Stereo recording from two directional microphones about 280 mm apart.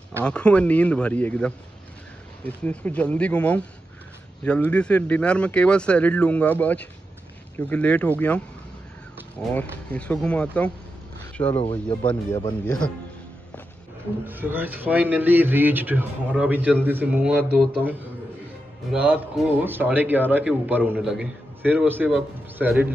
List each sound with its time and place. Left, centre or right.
0.2 s speech: centre
9.4 s speech: centre
11.4 s a man's voice: centre
14.2 s speech: centre